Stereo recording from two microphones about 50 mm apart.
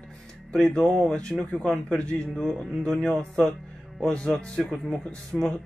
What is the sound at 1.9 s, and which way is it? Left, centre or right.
Speech, centre.